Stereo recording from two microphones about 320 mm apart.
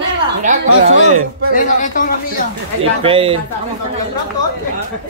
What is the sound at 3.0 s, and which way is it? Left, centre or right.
Speech, centre.